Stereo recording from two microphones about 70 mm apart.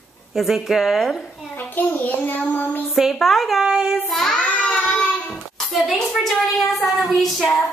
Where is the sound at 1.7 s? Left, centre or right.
Left.